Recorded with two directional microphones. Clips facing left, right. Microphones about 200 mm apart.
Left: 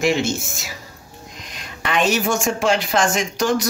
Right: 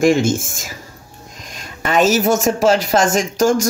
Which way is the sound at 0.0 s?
50° right (ahead or behind).